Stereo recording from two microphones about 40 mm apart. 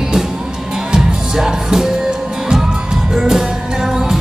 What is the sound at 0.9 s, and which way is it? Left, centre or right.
Music, centre.